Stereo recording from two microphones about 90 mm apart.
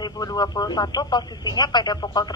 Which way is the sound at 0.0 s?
45° left (ahead or behind).